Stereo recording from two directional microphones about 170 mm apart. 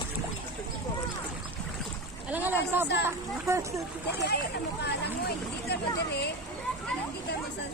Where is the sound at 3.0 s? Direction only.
20° right (ahead or behind).